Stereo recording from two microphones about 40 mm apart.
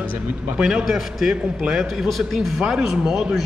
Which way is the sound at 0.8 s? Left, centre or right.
Centre.